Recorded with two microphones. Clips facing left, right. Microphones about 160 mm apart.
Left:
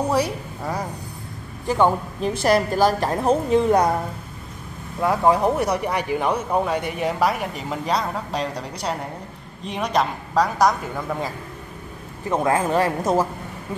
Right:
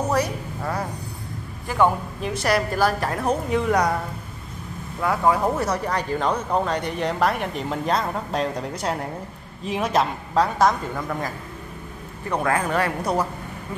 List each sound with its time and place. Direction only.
0.1 s a woman's voice: 10° left (ahead or behind)
1.7 s a woman's voice: 25° left (ahead or behind)
5.0 s speech: 20° left (ahead or behind); by 11.1 s centre (ahead or behind)
12.3 s a woman's voice: 25° left (ahead or behind)